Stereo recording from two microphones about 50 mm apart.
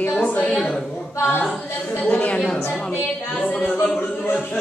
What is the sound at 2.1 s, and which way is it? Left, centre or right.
A woman's voice, left.